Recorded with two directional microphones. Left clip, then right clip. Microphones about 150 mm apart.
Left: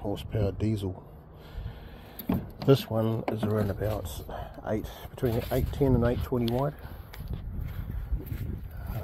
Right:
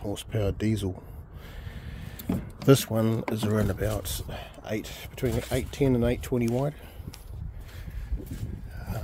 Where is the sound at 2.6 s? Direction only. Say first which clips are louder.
Right 2 dB; 50° right (ahead or behind).